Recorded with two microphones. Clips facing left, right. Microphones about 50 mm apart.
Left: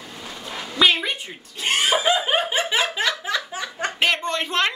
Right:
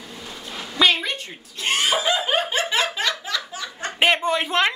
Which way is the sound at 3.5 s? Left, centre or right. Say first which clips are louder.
Left 3 dB; left.